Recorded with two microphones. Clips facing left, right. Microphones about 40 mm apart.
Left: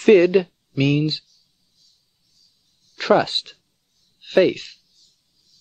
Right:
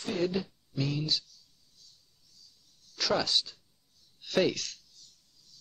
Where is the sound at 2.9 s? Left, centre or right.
Left.